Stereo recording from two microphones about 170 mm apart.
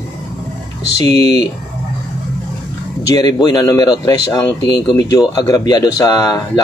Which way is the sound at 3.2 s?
20° left (ahead or behind).